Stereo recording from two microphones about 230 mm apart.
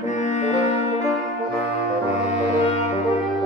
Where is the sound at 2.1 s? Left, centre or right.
Left.